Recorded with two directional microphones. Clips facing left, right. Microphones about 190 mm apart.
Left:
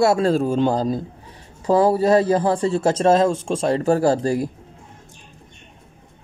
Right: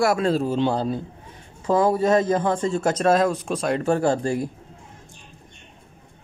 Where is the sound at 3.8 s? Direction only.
35° left (ahead or behind).